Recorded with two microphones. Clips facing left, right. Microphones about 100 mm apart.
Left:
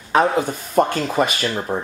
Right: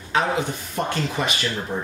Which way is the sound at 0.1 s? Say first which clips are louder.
Left 5 dB; 45° left (ahead or behind).